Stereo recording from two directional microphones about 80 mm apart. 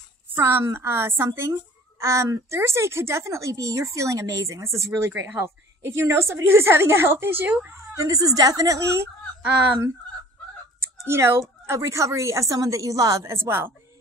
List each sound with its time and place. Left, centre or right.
0.3 s speech: right
7.9 s a woman's voice: right
11.1 s speech: right